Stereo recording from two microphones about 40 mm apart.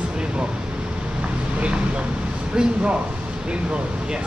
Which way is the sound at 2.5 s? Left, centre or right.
Right.